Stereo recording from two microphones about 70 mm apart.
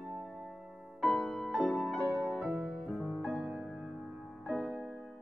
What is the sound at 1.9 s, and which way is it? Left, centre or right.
Music, right.